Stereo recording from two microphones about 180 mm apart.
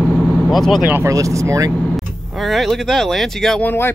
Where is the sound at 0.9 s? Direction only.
15° right (ahead or behind).